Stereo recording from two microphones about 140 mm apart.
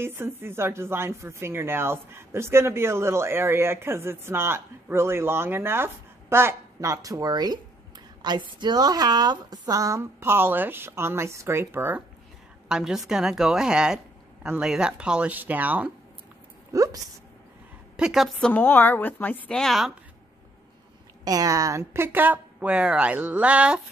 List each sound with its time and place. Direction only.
0.0 s a woman's voice: 15° right (ahead or behind)
12.6 s a woman's voice: 5° right (ahead or behind)
16.7 s a woman's voice: 25° right (ahead or behind)
17.9 s a woman's voice: 5° right (ahead or behind)
18.5 s a woman's voice: 15° left (ahead or behind)
21.2 s speech: 25° right (ahead or behind); by 23.8 s 10° right (ahead or behind)